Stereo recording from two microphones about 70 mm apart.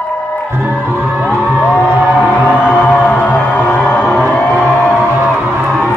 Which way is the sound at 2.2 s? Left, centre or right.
Centre.